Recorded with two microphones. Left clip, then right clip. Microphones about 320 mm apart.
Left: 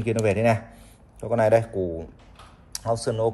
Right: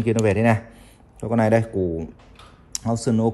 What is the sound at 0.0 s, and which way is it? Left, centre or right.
Speech, right.